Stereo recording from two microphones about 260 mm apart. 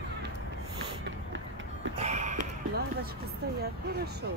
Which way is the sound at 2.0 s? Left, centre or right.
Right.